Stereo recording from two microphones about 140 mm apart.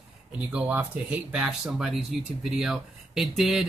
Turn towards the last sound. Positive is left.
turn(degrees=-5)  # may be behind; listen again after turning